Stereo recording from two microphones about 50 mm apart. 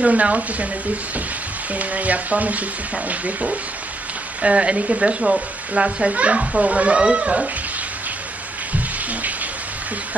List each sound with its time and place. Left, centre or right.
0.0 s speech: right
1.7 s speech: right
8.7 s music: right